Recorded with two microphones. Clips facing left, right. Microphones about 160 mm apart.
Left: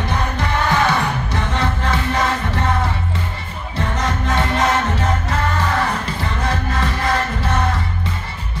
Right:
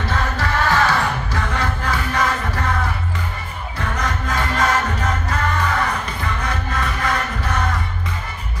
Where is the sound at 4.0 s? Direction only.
25° left (ahead or behind).